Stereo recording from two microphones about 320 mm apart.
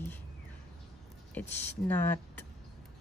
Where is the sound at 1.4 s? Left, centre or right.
Centre.